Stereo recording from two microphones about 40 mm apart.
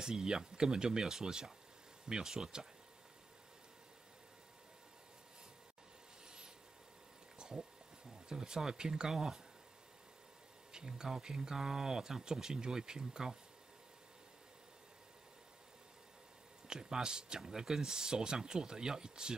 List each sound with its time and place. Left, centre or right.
0.0 s speech: centre
6.2 s vehicle: centre
7.3 s a sound: centre
8.3 s speech: centre
10.7 s speech: centre
16.6 s speech: centre